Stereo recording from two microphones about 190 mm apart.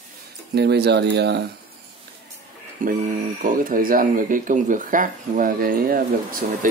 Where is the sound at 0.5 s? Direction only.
60° right (ahead or behind).